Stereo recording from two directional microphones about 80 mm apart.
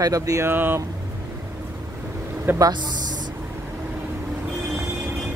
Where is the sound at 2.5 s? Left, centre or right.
Right.